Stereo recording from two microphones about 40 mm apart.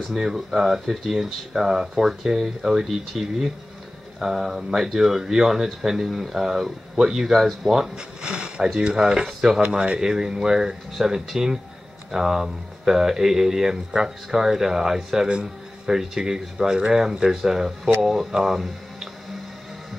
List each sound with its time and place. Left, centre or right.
0.1 s speech: centre
7.3 s speech: centre
7.7 s speech: centre
9.6 s speech: right